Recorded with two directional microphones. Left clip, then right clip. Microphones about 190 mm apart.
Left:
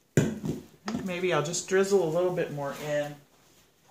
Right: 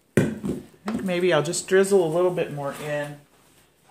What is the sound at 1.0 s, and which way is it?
Speech, 35° right (ahead or behind).